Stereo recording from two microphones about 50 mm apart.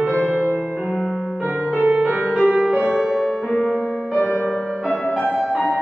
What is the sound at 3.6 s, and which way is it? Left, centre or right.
Music, centre.